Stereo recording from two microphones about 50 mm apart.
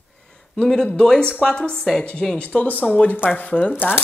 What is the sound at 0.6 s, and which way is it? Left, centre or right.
A woman's voice, centre.